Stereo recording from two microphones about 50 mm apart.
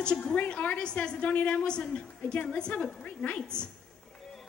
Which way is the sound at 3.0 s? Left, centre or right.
Left.